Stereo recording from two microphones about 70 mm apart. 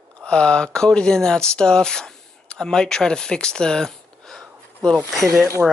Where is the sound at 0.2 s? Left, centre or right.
Centre.